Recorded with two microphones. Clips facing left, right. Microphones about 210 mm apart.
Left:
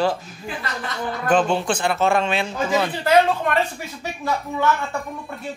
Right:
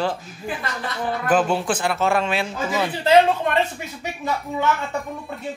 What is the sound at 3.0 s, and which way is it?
Speech, 25° right (ahead or behind).